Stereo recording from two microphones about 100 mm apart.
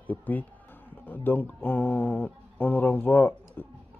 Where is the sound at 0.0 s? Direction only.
15° left (ahead or behind).